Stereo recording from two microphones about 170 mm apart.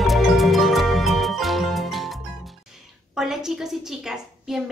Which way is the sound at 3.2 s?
5° right (ahead or behind).